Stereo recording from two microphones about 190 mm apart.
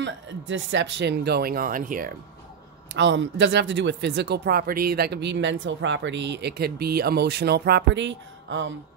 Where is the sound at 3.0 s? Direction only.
70° right (ahead or behind).